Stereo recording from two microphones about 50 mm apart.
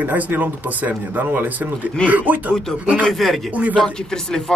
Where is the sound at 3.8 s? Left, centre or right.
Centre.